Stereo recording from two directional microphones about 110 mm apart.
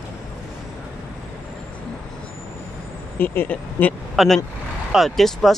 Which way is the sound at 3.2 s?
20° left (ahead or behind).